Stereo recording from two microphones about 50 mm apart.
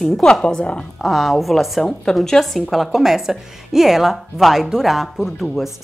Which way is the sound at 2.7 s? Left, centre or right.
Centre.